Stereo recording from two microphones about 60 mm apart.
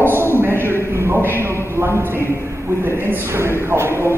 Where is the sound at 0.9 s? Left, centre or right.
Right.